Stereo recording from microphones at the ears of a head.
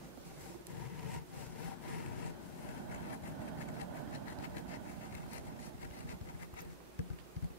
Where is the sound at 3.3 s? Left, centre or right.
Right.